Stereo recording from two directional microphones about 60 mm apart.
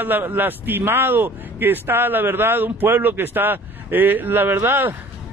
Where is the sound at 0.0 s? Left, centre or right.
Right.